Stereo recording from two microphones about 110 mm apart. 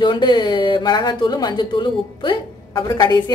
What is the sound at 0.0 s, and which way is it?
Speech, 45° left (ahead or behind).